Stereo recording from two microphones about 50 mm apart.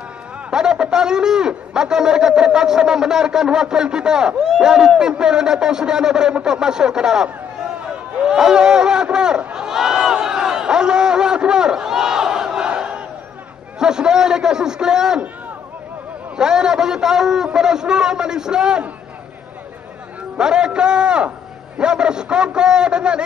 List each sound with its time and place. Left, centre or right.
0.5 s speech: centre
8.3 s run: centre
13.7 s speech: centre
16.3 s speech: centre
20.3 s a man's voice: centre